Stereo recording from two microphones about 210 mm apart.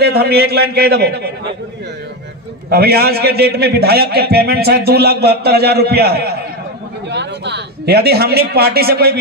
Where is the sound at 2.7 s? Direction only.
50° right (ahead or behind).